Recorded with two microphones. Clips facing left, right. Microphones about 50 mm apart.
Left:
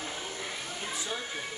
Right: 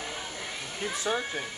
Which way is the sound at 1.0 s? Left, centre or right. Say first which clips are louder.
Right 6 dB; right.